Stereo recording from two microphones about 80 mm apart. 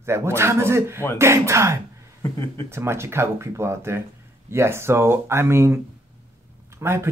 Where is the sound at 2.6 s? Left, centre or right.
Right.